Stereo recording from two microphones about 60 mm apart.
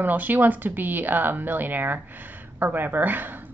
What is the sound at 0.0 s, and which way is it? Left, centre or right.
Speech, right.